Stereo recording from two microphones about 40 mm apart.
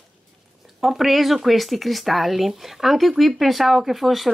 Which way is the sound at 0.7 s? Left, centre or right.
Centre.